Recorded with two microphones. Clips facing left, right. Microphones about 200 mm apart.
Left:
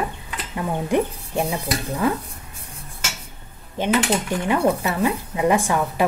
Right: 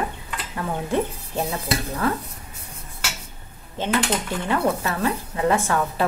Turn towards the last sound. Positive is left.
turn(degrees=15)  # may be behind; listen again after turning